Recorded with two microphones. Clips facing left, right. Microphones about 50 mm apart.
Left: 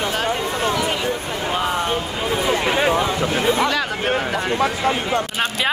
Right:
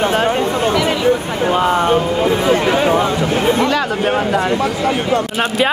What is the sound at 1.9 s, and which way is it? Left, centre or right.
Speech, right.